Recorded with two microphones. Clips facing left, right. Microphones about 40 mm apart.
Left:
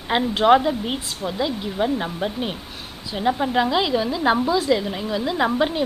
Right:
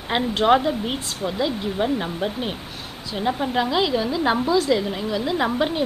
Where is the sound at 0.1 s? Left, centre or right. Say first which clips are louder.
Left 2 dB; centre.